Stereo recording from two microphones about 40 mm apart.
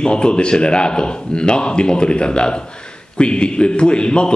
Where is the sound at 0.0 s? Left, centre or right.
Left.